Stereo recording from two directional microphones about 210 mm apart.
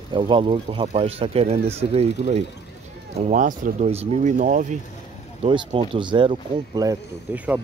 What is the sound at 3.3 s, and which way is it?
Speech, 35° right (ahead or behind).